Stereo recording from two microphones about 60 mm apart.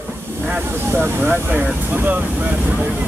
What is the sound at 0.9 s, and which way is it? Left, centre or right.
Speech, right.